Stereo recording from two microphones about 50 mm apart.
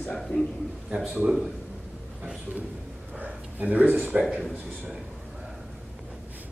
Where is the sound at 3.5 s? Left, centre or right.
Right.